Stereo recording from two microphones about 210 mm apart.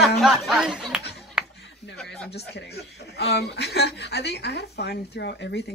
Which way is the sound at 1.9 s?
5° left (ahead or behind).